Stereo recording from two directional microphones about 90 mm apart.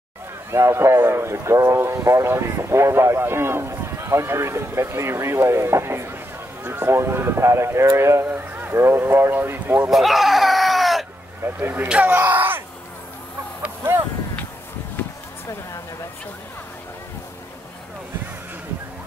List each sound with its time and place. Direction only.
0.5 s speech: 30° right (ahead or behind)
9.8 s goat: centre (ahead or behind)
11.6 s speech: 20° right (ahead or behind)
15.0 s a sound: 20° left (ahead or behind)